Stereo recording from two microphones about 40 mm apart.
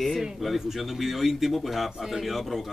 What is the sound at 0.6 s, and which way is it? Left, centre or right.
Speech, centre.